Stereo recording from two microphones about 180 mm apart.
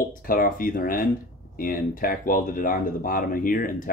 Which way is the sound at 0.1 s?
50° left (ahead or behind).